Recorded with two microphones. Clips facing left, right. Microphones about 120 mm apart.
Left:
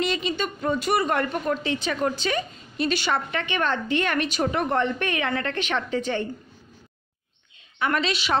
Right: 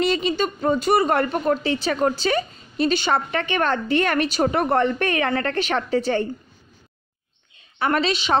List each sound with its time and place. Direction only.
0.0 s a woman's voice: 35° right (ahead or behind)
3.3 s a woman's voice: 40° right (ahead or behind)
7.8 s a woman's voice: 35° right (ahead or behind)